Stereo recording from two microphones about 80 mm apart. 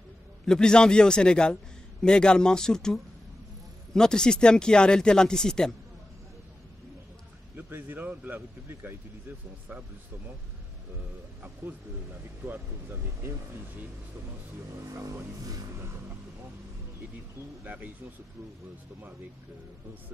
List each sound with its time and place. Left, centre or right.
0.5 s a man's voice: centre
7.5 s speech: right
12.4 s speech: right
14.9 s speech: right
17.6 s speech: right